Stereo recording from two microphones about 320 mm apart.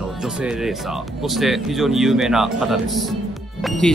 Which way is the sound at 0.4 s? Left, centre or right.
Centre.